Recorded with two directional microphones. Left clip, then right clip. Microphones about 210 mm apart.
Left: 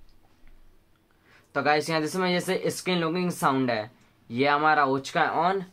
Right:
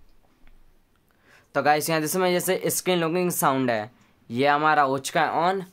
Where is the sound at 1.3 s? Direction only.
30° right (ahead or behind).